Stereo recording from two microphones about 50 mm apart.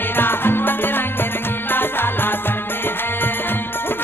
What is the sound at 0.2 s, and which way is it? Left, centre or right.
Music, left.